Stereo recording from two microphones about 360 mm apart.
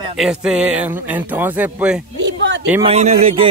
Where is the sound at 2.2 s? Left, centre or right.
Right.